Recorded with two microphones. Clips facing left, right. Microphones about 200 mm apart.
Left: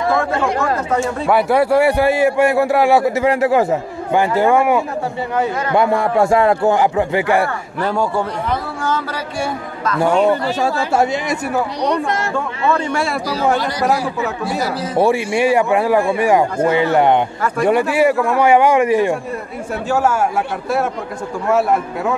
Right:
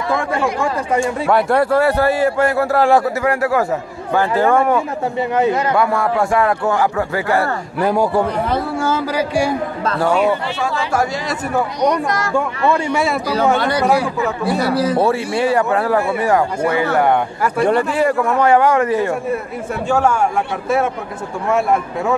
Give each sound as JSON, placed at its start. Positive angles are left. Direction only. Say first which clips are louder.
{"t": 0.2, "sound": "speech", "louder": "left 1 dB", "side_deg": -15}
{"t": 0.9, "sound": "a sound", "louder": "right 3 dB", "side_deg": -10}
{"t": 1.3, "sound": "a man's voice", "louder": "left 1 dB", "side_deg": 10}
{"t": 3.2, "sound": "a man's voice", "louder": "left 3 dB", "side_deg": 20}
{"t": 5.3, "sound": "a man's voice", "louder": "right 3 dB", "side_deg": -20}
{"t": 5.8, "sound": "a man's voice", "louder": "left 2 dB", "side_deg": 25}
{"t": 8.8, "sound": "a sound", "louder": "right 3 dB", "side_deg": -10}
{"t": 11.9, "sound": "a man's voice", "louder": "even", "side_deg": 25}
{"t": 12.7, "sound": "speech", "louder": "right 2 dB", "side_deg": -5}
{"t": 13.6, "sound": "speech", "louder": "right 2 dB", "side_deg": -60}
{"t": 15.0, "sound": "a man's voice", "louder": "left 1 dB", "side_deg": 10}
{"t": 17.6, "sound": "a man's voice", "louder": "left 3 dB", "side_deg": 10}
{"t": 21.5, "sound": "speech", "louder": "left 1 dB", "side_deg": 0}